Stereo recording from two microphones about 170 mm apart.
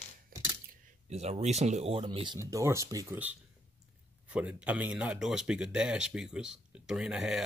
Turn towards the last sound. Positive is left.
turn(degrees=-5)  # may be behind; listen again after turning